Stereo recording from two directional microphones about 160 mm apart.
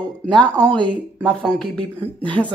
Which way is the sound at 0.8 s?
5° left (ahead or behind).